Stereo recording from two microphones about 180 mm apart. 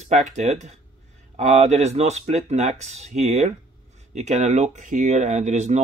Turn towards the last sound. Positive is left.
turn(degrees=-40)  # may be behind; listen again after turning